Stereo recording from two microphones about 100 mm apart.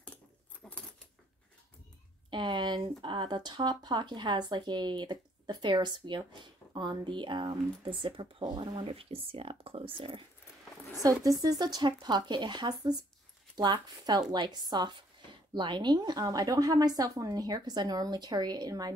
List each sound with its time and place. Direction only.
0.6 s keys jangling: 5° left (ahead or behind)
2.3 s speech: 50° right (ahead or behind)
11.0 s a woman's voice: 35° right (ahead or behind)